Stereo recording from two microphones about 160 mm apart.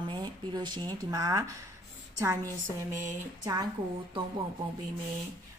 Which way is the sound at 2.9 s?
20° right (ahead or behind).